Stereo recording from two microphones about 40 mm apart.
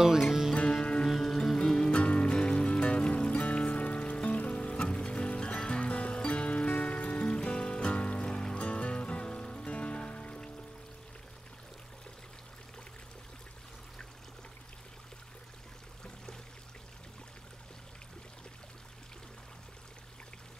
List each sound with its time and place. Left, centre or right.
0.2 s music: centre
1.0 s music: centre
1.9 s music: left
5.9 s music: left
8.3 s music: centre
8.5 s music: left